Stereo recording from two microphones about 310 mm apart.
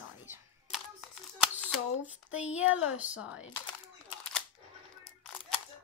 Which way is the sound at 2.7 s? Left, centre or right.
Left.